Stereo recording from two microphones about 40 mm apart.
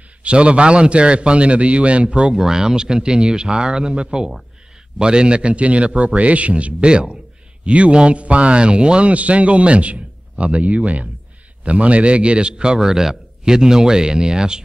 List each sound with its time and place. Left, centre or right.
0.2 s a man's voice: right
2.3 s a man's voice: centre
12.8 s speech: centre